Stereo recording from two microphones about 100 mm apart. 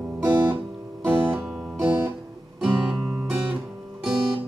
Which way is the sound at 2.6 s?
10° right (ahead or behind).